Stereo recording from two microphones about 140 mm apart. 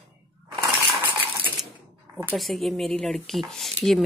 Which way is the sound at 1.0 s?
5° right (ahead or behind).